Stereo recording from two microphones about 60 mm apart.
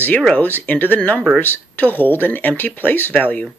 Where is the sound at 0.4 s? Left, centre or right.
Left.